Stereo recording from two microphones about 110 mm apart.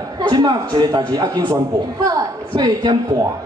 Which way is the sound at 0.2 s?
40° right (ahead or behind).